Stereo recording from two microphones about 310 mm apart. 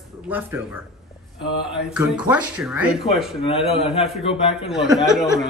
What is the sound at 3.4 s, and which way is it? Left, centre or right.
A man's voice, centre.